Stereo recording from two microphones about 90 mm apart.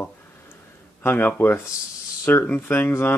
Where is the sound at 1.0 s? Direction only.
20° left (ahead or behind).